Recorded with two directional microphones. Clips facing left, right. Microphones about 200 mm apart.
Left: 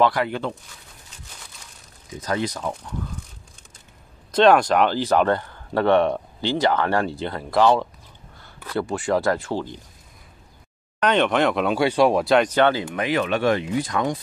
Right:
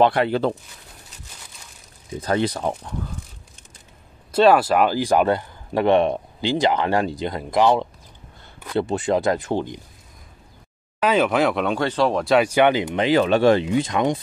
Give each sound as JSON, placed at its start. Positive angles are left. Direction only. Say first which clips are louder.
{"t": 0.0, "sound": "speech", "louder": "right 3 dB", "side_deg": -25}
{"t": 2.1, "sound": "speech", "louder": "right 4 dB", "side_deg": -30}
{"t": 4.3, "sound": "speech", "louder": "even", "side_deg": -5}
{"t": 11.0, "sound": "speech", "louder": "right 1 dB", "side_deg": -5}
{"t": 12.3, "sound": "speech", "louder": "right 1 dB", "side_deg": -10}
{"t": 12.9, "sound": "speech", "louder": "right 5 dB", "side_deg": -30}